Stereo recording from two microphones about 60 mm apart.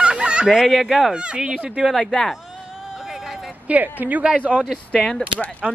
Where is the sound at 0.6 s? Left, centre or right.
Centre.